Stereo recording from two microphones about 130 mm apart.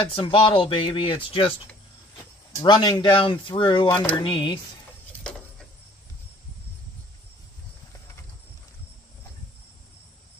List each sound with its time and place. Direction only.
0.0 s speech: 40° left (ahead or behind)
2.6 s speech: 35° left (ahead or behind)